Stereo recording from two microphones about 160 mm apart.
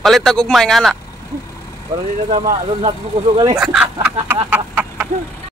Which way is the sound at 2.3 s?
45° right (ahead or behind).